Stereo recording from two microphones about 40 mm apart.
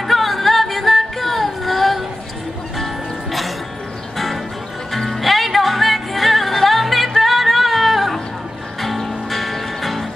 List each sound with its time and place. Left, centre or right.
0.0 s music: centre
4.9 s music: centre